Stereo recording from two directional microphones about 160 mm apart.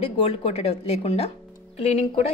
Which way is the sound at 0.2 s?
40° left (ahead or behind).